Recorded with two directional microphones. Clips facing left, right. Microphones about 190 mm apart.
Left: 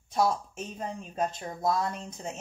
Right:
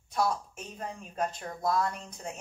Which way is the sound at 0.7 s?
25° left (ahead or behind).